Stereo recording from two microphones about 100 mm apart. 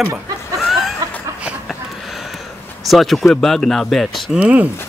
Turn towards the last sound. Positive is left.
turn(degrees=-10)  # may be behind; listen again after turning